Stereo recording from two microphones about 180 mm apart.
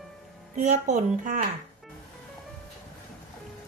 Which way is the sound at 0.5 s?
40° right (ahead or behind).